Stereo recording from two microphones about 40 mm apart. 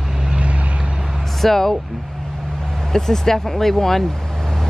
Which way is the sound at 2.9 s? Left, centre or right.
Centre.